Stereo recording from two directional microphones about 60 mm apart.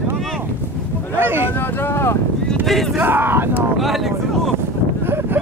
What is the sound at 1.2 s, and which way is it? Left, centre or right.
Speech, right.